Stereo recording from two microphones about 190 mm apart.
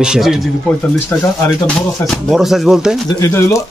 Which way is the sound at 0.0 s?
5° right (ahead or behind).